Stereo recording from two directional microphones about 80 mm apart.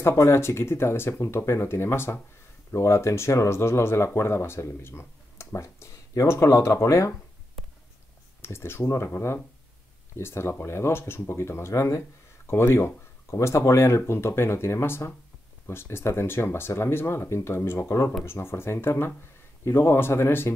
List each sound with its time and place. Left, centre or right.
0.0 s speech: left
8.4 s speech: left